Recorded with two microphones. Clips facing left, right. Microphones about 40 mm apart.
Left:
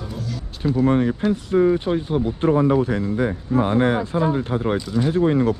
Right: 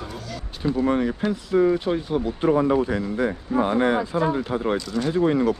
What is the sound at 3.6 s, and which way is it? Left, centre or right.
Speech, left.